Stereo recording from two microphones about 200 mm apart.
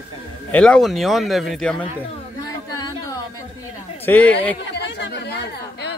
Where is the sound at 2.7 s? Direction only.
20° left (ahead or behind).